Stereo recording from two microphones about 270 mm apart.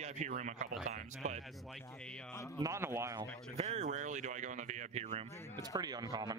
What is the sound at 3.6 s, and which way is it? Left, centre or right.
Speech, right.